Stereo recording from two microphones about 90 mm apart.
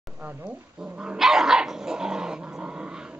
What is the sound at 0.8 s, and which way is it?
Dog, 10° right (ahead or behind).